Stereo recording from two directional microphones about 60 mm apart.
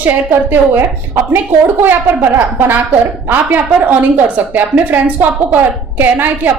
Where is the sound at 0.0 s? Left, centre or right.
Right.